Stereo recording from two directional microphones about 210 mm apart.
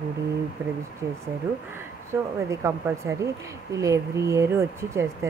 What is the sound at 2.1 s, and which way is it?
Speech, 15° right (ahead or behind).